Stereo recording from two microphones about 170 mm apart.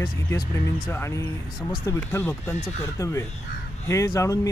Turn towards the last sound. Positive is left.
turn(degrees=20)  # may be behind; listen again after turning